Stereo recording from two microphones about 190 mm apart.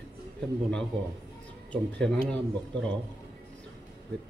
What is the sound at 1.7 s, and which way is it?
Speech, 5° left (ahead or behind).